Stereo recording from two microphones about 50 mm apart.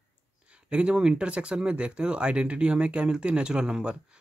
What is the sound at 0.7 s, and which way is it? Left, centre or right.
Speech, right.